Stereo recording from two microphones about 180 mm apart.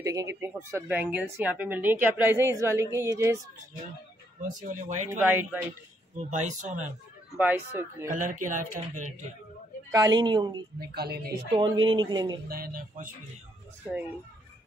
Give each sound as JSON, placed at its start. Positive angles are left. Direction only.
{"t": 0.0, "sound": "speech", "side_deg": -20}
{"t": 4.4, "sound": "speech", "side_deg": -45}
{"t": 5.2, "sound": "speech", "side_deg": -10}
{"t": 6.1, "sound": "speech", "side_deg": -45}
{"t": 7.3, "sound": "speech", "side_deg": -10}
{"t": 8.1, "sound": "speech", "side_deg": -45}
{"t": 9.8, "sound": "a woman's voice", "side_deg": -20}
{"t": 10.8, "sound": "speech", "side_deg": -60}
{"t": 11.5, "sound": "a woman's voice", "side_deg": -25}
{"t": 12.4, "sound": "speech", "side_deg": -55}